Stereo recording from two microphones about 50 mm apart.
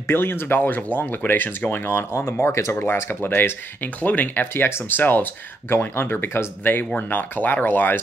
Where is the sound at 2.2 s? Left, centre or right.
Left.